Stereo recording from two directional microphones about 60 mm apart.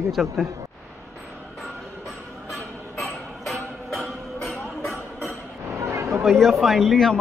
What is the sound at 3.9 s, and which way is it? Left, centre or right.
Music, centre.